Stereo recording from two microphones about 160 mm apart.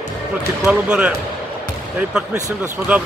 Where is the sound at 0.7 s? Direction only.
5° right (ahead or behind).